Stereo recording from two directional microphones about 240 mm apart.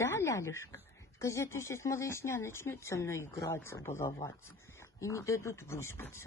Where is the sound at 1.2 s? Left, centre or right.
Centre.